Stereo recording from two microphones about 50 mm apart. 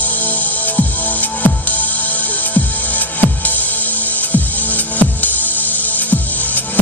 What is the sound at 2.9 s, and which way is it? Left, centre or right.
Music, left.